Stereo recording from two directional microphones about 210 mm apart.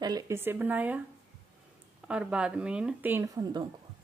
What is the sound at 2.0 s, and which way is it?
A woman's voice, 5° right (ahead or behind).